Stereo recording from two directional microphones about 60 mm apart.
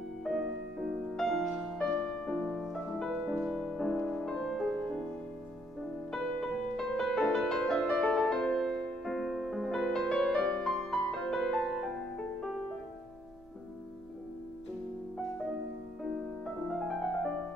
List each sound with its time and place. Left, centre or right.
0.2 s music: centre
1.8 s music: centre
6.1 s music: centre
16.6 s music: centre